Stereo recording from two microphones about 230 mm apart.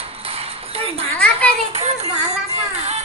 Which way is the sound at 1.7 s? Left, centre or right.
Right.